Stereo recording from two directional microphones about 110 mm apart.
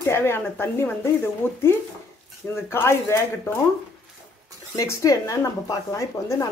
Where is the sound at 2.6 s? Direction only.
25° left (ahead or behind).